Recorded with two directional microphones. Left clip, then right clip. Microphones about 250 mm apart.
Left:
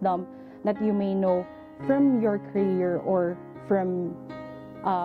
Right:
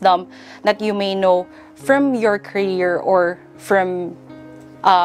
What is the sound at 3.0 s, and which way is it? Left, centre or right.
Speech, right.